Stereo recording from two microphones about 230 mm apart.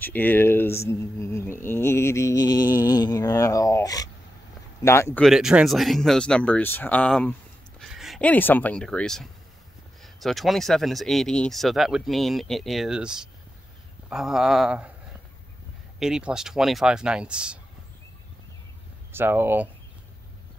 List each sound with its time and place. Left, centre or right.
0.0 s speech: centre
2.8 s a sound: centre
4.8 s speech: centre
16.0 s speech: centre
19.1 s speech: centre